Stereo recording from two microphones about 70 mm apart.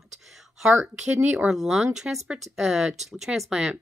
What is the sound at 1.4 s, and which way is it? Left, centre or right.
Speech, centre.